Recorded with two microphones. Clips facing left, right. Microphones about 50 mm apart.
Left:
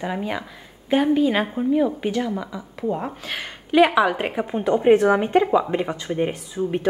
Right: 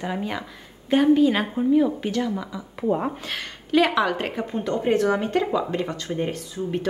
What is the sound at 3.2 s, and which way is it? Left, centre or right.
A woman's voice, centre.